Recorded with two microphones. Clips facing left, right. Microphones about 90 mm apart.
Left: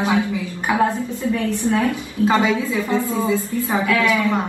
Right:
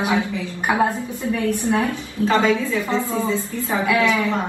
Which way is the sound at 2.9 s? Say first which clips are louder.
Left 4 dB; 25° right (ahead or behind).